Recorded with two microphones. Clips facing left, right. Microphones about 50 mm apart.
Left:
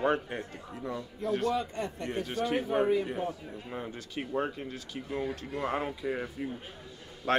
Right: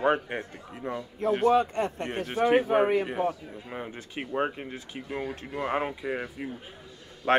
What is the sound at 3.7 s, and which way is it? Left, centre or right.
Speech, right.